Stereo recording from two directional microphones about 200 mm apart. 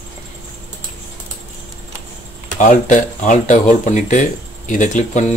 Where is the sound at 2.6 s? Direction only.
40° left (ahead or behind).